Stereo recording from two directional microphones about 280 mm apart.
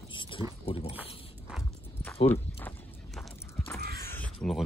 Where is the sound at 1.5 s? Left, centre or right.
Centre.